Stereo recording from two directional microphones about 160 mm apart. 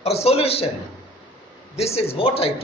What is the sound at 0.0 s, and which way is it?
Speech, 40° left (ahead or behind).